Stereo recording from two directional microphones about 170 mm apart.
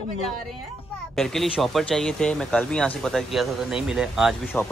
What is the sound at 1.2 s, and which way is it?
Speech, centre (ahead or behind).